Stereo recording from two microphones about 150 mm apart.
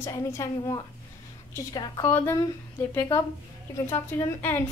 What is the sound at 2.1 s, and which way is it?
A woman's voice, 15° left (ahead or behind).